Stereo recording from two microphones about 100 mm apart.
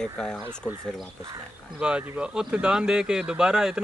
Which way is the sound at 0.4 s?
20° right (ahead or behind).